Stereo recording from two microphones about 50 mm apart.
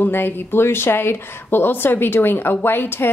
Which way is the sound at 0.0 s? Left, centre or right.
Left.